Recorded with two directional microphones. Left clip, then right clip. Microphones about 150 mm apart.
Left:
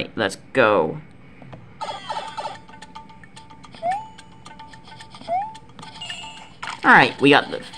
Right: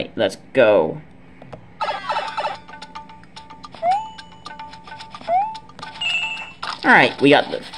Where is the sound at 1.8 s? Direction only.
30° right (ahead or behind).